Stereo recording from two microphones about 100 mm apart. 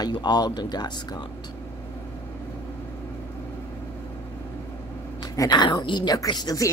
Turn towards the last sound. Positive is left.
turn(degrees=40)  # may be behind; listen again after turning